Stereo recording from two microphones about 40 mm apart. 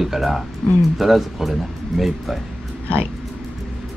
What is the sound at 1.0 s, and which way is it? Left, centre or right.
Speech, centre.